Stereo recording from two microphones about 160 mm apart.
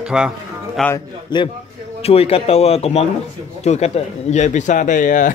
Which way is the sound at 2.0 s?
40° left (ahead or behind).